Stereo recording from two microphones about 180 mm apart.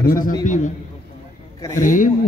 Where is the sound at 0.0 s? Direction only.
55° left (ahead or behind).